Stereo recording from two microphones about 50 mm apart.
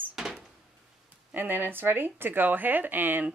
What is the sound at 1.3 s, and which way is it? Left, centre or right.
Speech, right.